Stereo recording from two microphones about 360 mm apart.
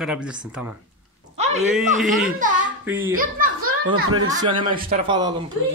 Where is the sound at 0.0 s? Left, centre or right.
Centre.